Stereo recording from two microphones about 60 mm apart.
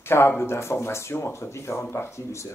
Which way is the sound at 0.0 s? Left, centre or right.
Left.